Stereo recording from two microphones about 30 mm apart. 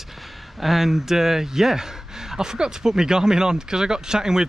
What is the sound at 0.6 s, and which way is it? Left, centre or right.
Speech, centre.